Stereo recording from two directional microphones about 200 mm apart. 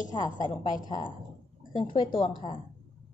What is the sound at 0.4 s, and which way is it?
A woman's voice, 20° left (ahead or behind).